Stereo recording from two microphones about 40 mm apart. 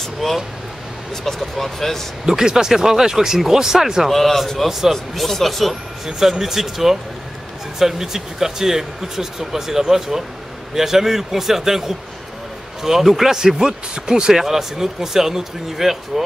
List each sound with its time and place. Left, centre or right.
0.0 s speech: centre
2.2 s speech: centre
4.1 s speech: centre
4.6 s speech: centre
4.9 s speech: centre
6.0 s speech: centre
12.8 s speech: centre
14.3 s speech: centre